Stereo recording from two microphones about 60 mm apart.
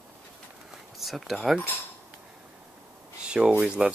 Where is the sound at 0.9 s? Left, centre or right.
Centre.